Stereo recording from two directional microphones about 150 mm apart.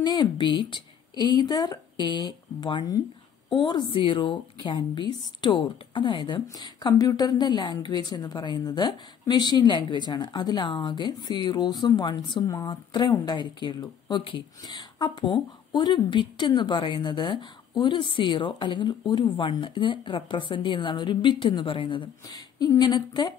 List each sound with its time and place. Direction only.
0.0 s a woman's voice: 30° left (ahead or behind)